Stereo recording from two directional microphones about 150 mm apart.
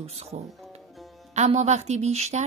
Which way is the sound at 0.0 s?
45° right (ahead or behind).